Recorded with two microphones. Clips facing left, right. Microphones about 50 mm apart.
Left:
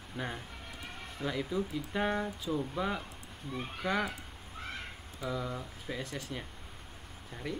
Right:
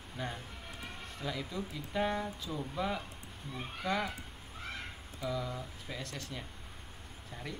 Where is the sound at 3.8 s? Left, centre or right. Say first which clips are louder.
Left 2 dB; left.